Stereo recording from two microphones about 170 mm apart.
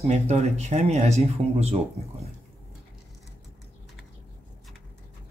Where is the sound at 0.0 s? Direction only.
40° right (ahead or behind).